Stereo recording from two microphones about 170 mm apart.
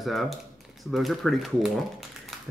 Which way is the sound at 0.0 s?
Centre (ahead or behind).